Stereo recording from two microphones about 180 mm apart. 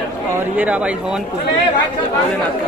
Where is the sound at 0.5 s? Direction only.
10° right (ahead or behind).